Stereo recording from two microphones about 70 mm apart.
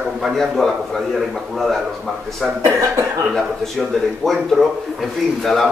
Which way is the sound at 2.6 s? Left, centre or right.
Right.